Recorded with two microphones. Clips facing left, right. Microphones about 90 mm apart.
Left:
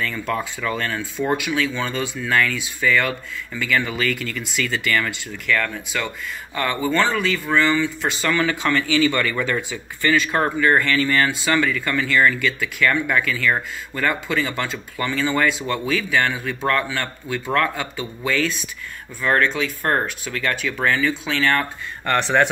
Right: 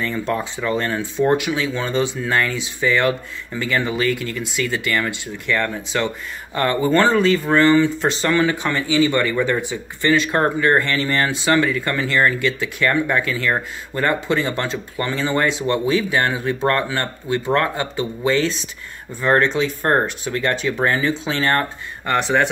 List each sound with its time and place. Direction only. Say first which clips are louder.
0.3 s speech: right 3 dB; 25° right (ahead or behind)
22.0 s speech: even; 5° right (ahead or behind)